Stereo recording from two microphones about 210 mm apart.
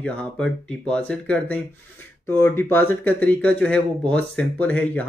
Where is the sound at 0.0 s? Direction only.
5° left (ahead or behind).